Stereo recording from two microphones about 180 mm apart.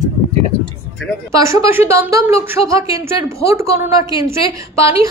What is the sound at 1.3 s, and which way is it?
A woman's voice, 15° right (ahead or behind).